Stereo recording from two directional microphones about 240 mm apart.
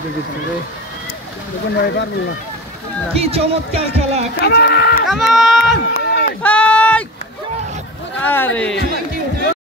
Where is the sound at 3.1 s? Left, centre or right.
Right.